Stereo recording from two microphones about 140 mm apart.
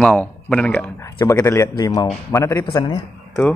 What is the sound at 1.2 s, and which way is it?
A man's voice, 25° left (ahead or behind).